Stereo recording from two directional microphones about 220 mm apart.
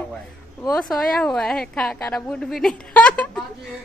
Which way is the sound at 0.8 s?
Centre (ahead or behind).